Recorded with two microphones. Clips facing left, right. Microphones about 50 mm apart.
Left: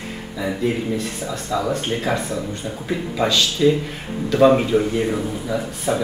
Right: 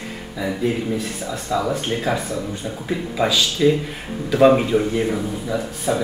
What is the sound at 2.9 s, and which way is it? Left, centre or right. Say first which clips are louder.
A man's voice: even; centre.